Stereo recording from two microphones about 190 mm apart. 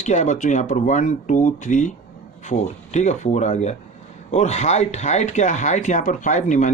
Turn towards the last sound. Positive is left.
turn(degrees=40)  # may be behind; listen again after turning